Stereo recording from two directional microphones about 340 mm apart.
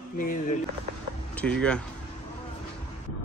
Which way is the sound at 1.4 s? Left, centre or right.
Centre.